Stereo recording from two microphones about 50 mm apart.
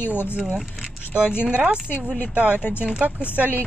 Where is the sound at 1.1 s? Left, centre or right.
Centre.